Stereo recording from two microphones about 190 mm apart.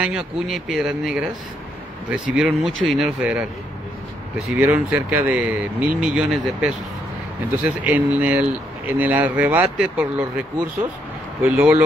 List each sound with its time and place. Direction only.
0.0 s speech: 5° right (ahead or behind)
2.3 s speech: centre (ahead or behind)
4.5 s speech: 10° right (ahead or behind)
11.4 s speech: 10° right (ahead or behind)